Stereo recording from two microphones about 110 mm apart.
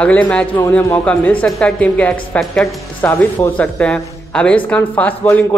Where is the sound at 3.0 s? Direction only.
15° left (ahead or behind).